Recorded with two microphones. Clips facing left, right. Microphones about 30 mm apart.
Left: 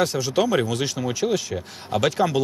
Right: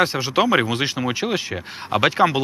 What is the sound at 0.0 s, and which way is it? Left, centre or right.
Speech, right.